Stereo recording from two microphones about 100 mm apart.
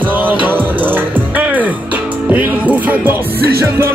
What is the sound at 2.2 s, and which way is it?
Music, 15° right (ahead or behind).